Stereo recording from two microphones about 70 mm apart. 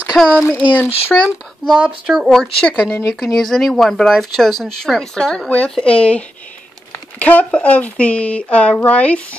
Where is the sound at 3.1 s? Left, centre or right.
Centre.